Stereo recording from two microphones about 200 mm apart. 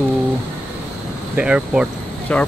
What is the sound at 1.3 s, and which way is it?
Speech, 5° right (ahead or behind).